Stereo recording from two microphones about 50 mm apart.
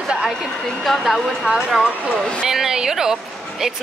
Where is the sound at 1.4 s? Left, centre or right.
Right.